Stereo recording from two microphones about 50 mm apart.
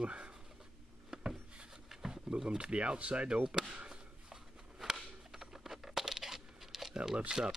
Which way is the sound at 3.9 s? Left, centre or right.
Centre.